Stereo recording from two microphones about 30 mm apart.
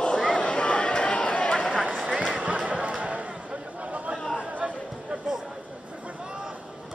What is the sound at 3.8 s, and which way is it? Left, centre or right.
Chatter, right.